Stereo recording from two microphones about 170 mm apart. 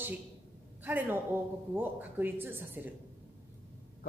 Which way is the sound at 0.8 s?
10° right (ahead or behind).